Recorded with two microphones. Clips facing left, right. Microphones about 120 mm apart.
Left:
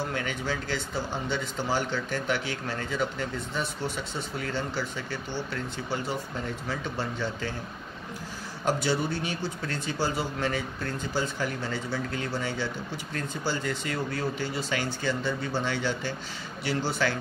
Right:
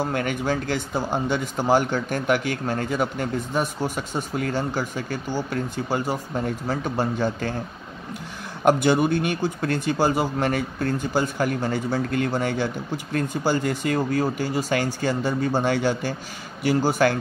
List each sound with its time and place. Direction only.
0.0 s speech: 50° right (ahead or behind)
8.6 s speech: 60° right (ahead or behind)